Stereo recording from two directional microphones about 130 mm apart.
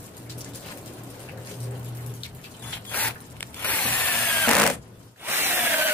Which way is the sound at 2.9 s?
15° left (ahead or behind).